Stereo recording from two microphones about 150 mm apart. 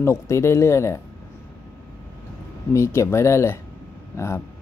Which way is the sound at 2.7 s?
20° left (ahead or behind).